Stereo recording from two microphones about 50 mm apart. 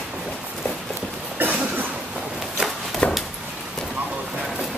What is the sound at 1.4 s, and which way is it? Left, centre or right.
Cough, right.